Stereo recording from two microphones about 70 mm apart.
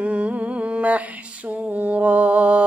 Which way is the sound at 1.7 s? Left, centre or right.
Right.